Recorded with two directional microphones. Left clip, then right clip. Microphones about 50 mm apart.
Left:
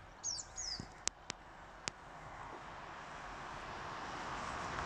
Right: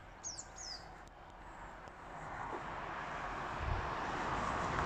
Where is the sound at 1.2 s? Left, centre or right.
Centre.